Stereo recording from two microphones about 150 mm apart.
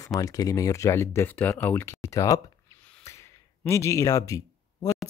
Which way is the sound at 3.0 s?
20° left (ahead or behind).